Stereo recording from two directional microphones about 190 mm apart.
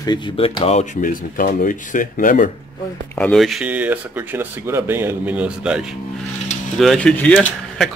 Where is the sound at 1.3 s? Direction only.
45° left (ahead or behind).